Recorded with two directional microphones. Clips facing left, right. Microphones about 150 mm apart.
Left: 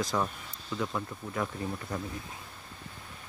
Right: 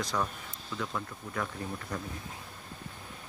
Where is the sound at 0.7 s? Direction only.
15° left (ahead or behind).